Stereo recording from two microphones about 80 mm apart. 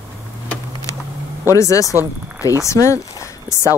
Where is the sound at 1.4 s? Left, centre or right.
Left.